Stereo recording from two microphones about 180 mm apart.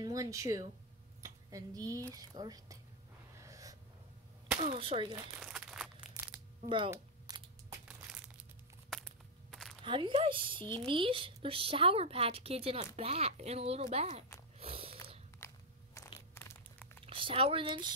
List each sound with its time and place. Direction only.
0.0 s speech: 20° right (ahead or behind)
3.4 s snort: 20° right (ahead or behind)
4.7 s speech: 30° right (ahead or behind)
5.4 s crumpling: 5° right (ahead or behind)
6.1 s a sound: 10° right (ahead or behind)
8.9 s a sound: centre (ahead or behind)
9.8 s speech: 30° right (ahead or behind)
14.6 s biting: 30° right (ahead or behind)
15.4 s crunch: 15° left (ahead or behind)
17.0 s speech: 30° right (ahead or behind)